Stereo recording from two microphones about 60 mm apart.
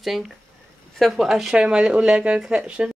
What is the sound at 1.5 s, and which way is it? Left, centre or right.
Speech, centre.